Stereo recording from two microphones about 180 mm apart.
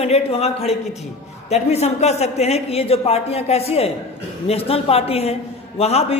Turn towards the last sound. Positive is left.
turn(degrees=35)  # may be behind; listen again after turning